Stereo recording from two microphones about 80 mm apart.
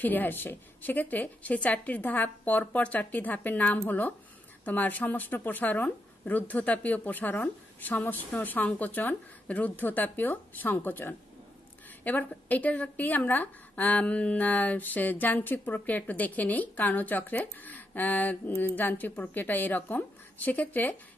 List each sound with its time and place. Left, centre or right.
0.0 s a woman's voice: left